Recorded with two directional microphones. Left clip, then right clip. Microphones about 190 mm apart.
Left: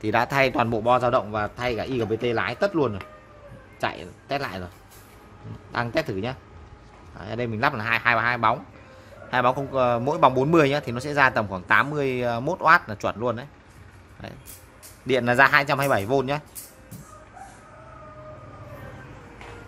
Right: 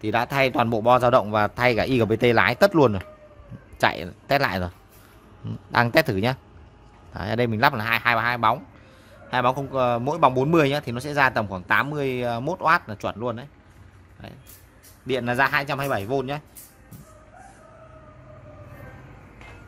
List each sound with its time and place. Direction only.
0.0 s speech: 10° right (ahead or behind); by 4.6 s 35° right (ahead or behind)
5.7 s a man's voice: 35° right (ahead or behind); by 16.4 s centre (ahead or behind)